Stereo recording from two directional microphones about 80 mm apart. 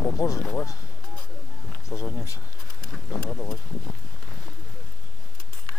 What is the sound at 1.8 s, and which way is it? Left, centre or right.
Speech, left.